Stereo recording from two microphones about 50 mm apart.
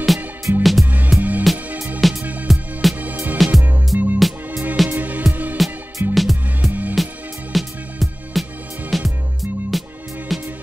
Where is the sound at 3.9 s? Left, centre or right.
Right.